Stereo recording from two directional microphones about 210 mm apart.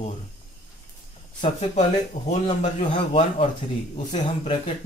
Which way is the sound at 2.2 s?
35° left (ahead or behind).